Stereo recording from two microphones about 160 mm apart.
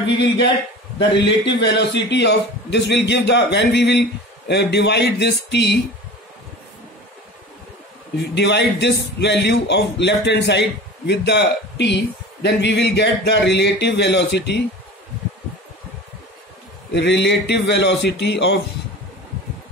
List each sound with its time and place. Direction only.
0.0 s a man's voice: 90° left
8.2 s a man's voice: 90° left
16.9 s a man's voice: 90° left